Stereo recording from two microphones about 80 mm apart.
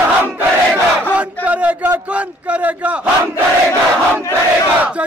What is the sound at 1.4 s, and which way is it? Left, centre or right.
A man's voice, centre.